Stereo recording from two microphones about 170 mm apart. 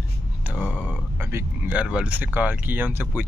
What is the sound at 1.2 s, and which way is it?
Speech, 15° right (ahead or behind).